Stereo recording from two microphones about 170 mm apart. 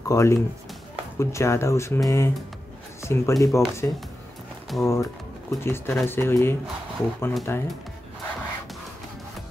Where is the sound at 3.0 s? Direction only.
15° left (ahead or behind).